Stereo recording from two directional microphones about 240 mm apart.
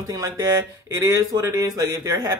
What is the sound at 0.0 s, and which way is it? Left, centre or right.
Speech, centre.